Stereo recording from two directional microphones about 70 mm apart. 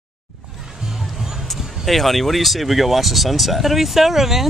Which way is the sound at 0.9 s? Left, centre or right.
Centre.